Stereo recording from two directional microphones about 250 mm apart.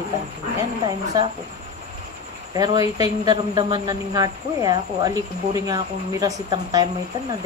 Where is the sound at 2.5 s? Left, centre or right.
Centre.